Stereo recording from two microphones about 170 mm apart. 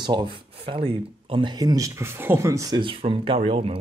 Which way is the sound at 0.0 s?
25° right (ahead or behind).